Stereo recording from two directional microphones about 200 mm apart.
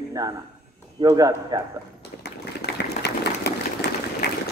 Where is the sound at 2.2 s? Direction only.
55° left (ahead or behind).